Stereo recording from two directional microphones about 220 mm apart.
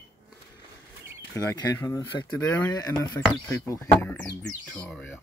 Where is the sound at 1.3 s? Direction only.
15° left (ahead or behind).